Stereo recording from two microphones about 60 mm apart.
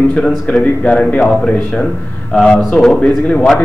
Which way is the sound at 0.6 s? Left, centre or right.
Centre.